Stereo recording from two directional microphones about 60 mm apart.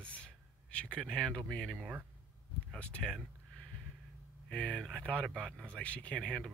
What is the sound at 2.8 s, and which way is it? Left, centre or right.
Speech, centre.